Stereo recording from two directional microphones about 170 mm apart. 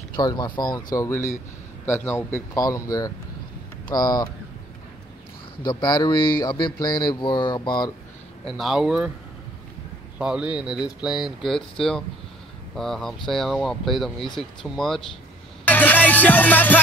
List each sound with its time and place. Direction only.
0.1 s a man's voice: 25° left (ahead or behind)
5.6 s speech: 25° left (ahead or behind)
8.5 s speech: centre (ahead or behind)
10.1 s speech: 5° right (ahead or behind)
12.7 s speech: centre (ahead or behind)
15.6 s music: 10° left (ahead or behind)